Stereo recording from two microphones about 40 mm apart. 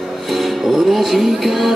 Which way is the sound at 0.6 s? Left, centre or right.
Centre.